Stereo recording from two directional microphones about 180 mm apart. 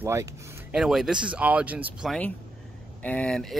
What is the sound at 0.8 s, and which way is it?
Speech, centre (ahead or behind).